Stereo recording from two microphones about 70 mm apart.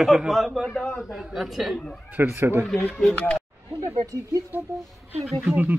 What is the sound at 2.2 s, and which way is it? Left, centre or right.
Speech, right.